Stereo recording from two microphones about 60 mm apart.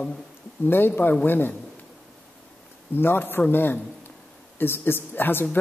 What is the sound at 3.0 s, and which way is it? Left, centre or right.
Speech, left.